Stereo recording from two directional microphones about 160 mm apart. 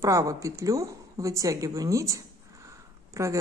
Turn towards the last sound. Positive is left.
turn(degrees=-20)  # may be behind; listen again after turning